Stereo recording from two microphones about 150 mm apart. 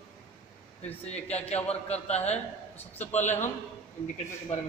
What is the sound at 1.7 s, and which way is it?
A man's voice, 45° left (ahead or behind).